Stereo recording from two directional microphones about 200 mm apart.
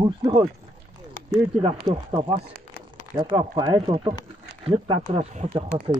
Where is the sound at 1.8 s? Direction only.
25° right (ahead or behind).